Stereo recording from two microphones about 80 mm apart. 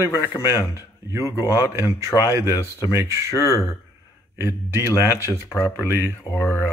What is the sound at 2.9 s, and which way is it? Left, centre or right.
Speech, right.